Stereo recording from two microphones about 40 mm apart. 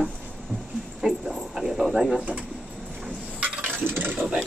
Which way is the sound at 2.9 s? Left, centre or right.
Centre.